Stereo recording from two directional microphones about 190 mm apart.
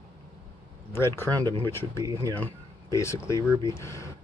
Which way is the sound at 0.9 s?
10° left (ahead or behind).